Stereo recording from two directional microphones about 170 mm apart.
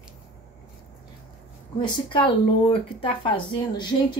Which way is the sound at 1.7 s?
30° left (ahead or behind).